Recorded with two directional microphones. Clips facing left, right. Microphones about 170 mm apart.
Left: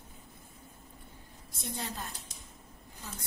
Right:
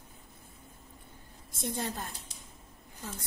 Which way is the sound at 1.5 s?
50° right (ahead or behind).